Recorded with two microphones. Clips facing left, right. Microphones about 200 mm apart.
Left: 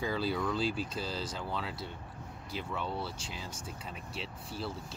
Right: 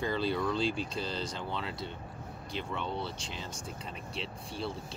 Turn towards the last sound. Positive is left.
turn(degrees=5)  # may be behind; listen again after turning